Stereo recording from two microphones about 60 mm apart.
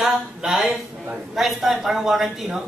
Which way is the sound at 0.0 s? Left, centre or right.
Centre.